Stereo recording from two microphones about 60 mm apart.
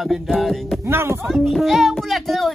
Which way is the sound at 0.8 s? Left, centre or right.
Right.